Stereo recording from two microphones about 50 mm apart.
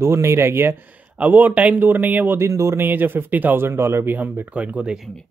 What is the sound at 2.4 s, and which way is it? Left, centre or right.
Speech, right.